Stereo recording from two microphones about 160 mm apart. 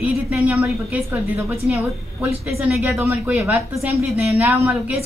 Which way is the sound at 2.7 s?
5° right (ahead or behind).